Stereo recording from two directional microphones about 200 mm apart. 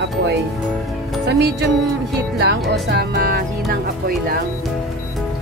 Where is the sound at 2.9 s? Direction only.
55° right (ahead or behind).